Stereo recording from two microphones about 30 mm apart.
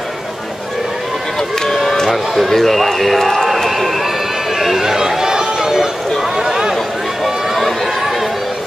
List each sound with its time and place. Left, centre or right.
2.0 s a man's voice: centre
2.5 s a man's voice: centre
3.4 s run: centre
4.6 s speech: centre
4.8 s run: centre
6.3 s a sound: right